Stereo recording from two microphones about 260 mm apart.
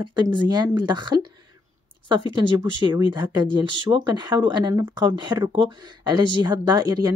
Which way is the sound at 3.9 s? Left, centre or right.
Centre.